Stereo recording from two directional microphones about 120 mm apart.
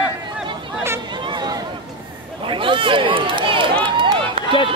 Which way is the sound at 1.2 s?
35° right (ahead or behind).